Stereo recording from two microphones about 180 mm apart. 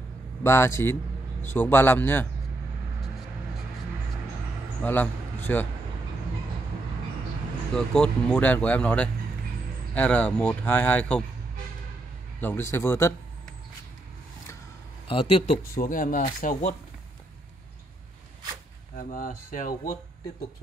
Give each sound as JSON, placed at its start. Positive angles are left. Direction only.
{"t": 0.4, "sound": "speech", "side_deg": 15}
{"t": 4.8, "sound": "a man's voice", "side_deg": 10}
{"t": 7.7, "sound": "speech", "side_deg": 5}
{"t": 12.4, "sound": "speech", "side_deg": 15}
{"t": 15.0, "sound": "speech", "side_deg": 30}
{"t": 15.7, "sound": "speech", "side_deg": 50}
{"t": 18.9, "sound": "speech", "side_deg": 50}